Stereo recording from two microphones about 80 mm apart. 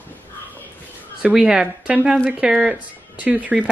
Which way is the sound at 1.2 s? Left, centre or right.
Centre.